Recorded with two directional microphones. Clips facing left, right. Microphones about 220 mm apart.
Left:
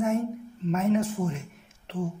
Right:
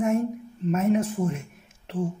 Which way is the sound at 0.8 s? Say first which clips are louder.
Right 1 dB; 20° right (ahead or behind).